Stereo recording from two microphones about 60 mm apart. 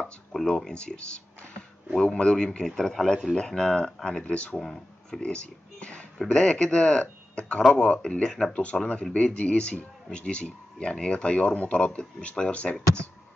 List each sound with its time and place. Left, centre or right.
0.0 s a sound: centre
0.5 s speech: centre
4.6 s speech: centre
5.2 s speech: centre